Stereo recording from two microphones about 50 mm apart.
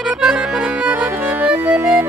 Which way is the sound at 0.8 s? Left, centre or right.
Right.